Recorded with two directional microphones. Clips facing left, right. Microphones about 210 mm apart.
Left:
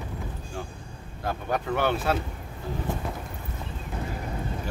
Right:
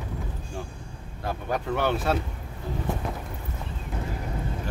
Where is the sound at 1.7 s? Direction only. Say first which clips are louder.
Even; centre (ahead or behind).